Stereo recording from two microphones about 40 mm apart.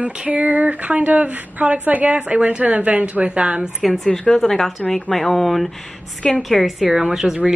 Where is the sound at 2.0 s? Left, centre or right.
Right.